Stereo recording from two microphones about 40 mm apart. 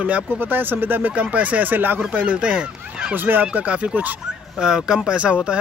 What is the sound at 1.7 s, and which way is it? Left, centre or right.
Speech, right.